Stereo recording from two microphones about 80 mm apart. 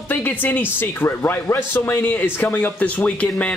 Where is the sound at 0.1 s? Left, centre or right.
Left.